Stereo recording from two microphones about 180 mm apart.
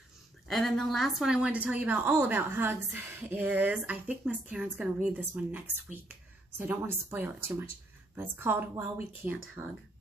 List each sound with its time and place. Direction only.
0.5 s a woman's voice: centre (ahead or behind)